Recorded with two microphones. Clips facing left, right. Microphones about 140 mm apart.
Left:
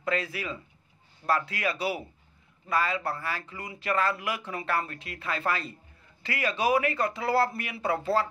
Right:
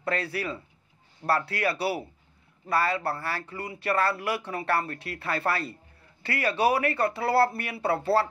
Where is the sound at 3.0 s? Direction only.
30° right (ahead or behind).